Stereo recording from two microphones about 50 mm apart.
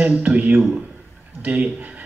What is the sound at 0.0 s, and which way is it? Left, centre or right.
Speech, right.